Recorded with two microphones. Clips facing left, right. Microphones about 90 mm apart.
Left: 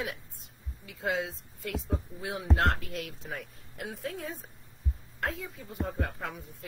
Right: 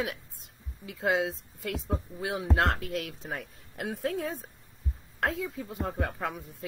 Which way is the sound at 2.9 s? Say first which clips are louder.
Right 4 dB; 80° right.